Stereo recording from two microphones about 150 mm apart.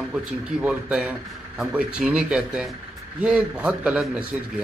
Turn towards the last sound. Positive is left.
turn(degrees=-5)  # may be behind; listen again after turning